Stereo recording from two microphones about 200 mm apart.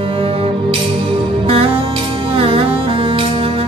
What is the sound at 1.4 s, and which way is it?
Music, 30° right (ahead or behind).